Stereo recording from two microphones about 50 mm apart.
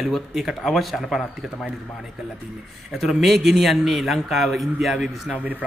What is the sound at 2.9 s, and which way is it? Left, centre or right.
A man's voice, centre.